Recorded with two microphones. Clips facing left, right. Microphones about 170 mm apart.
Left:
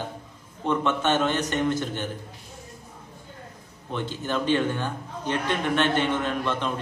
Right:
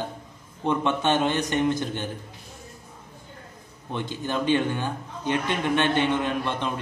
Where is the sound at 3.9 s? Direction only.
15° right (ahead or behind).